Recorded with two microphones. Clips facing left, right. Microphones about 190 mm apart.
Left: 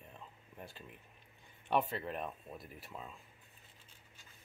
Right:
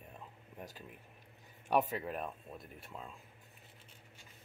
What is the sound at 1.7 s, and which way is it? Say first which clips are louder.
Speech: right 2 dB; 5° right (ahead or behind).